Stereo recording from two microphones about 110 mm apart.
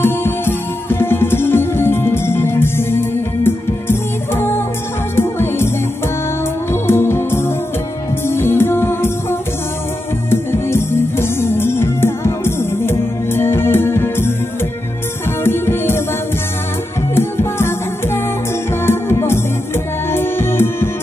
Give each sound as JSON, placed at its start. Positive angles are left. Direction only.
{"t": 0.0, "sound": "music", "side_deg": 20}
{"t": 6.7, "sound": "music", "side_deg": 20}
{"t": 15.4, "sound": "music", "side_deg": 20}
{"t": 17.1, "sound": "music", "side_deg": 20}